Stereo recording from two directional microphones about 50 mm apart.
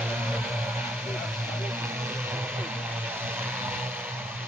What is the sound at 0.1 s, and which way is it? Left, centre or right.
Music, right.